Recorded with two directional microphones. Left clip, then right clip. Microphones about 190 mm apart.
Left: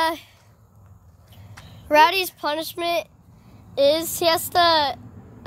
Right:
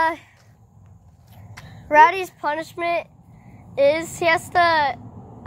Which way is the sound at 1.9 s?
45° left (ahead or behind).